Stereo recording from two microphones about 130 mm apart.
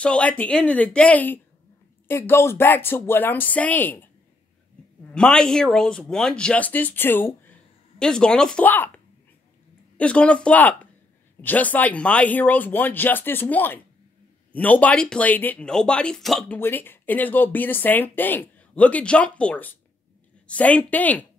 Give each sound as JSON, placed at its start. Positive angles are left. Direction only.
{"t": 0.0, "sound": "speech", "side_deg": 10}
{"t": 5.1, "sound": "speech", "side_deg": 5}
{"t": 8.0, "sound": "speech", "side_deg": 5}
{"t": 16.5, "sound": "speech", "side_deg": 15}